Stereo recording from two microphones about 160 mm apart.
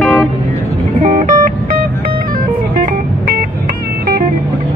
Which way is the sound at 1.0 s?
55° right (ahead or behind).